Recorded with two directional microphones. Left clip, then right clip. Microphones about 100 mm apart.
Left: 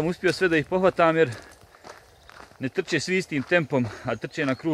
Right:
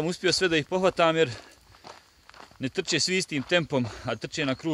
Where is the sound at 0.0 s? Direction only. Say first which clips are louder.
Left 2 dB; 30° right (ahead or behind).